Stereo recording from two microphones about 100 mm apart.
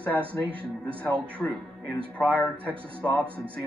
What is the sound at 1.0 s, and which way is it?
Speech, 10° left (ahead or behind).